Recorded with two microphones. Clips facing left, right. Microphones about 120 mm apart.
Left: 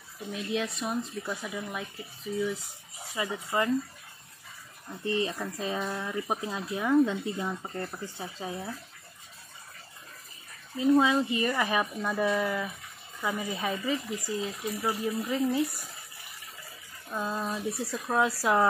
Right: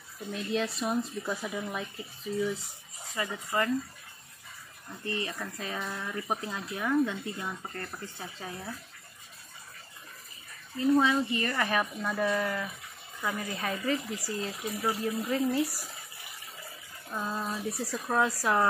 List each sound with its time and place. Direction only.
0.3 s speech: 5° left (ahead or behind)
3.2 s speech: 15° left (ahead or behind)
5.0 s speech: 25° left (ahead or behind)
6.4 s speech: 20° left (ahead or behind)
10.8 s speech: 15° left (ahead or behind); by 15.4 s centre (ahead or behind)
15.5 s speech: 20° left (ahead or behind)
17.1 s speech: centre (ahead or behind)
18.4 s speech: 20° left (ahead or behind)